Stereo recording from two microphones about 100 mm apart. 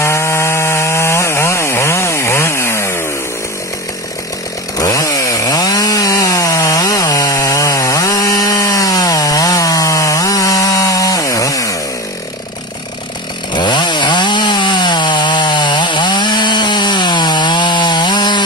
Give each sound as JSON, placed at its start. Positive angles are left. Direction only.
{"t": 0.0, "sound": "chainsaw", "side_deg": 25}
{"t": 4.7, "sound": "chainsaw", "side_deg": 35}
{"t": 13.5, "sound": "chainsaw", "side_deg": 45}